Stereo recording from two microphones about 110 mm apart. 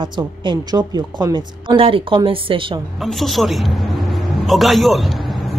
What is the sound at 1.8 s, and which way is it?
Speech, 55° right (ahead or behind).